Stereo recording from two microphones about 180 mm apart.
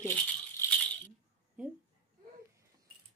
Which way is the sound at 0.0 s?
10° left (ahead or behind).